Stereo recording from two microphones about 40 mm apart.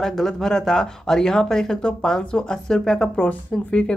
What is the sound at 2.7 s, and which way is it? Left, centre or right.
Speech, centre.